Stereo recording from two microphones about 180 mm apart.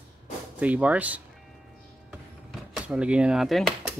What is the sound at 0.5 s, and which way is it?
Speech, 10° right (ahead or behind).